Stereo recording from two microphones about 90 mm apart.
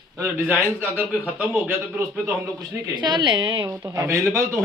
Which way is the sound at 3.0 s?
60° right (ahead or behind).